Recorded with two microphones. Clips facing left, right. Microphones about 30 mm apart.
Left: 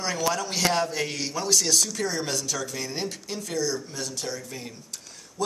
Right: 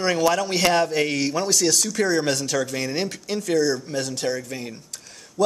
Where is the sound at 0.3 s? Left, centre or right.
Right.